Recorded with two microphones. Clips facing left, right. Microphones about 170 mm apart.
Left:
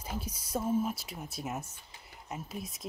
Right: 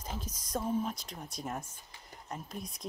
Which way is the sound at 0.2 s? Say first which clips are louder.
Left 1 dB; 10° left (ahead or behind).